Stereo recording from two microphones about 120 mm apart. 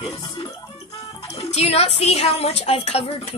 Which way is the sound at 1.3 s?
65° left (ahead or behind).